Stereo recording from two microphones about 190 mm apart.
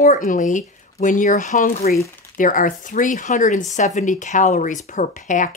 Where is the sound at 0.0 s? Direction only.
45° left (ahead or behind).